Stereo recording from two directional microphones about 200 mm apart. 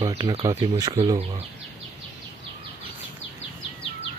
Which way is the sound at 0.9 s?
30° right (ahead or behind).